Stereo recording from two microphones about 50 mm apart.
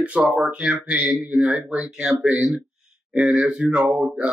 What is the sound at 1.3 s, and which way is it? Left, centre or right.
Speech, centre.